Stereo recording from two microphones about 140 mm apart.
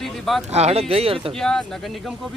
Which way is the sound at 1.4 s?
5° left (ahead or behind).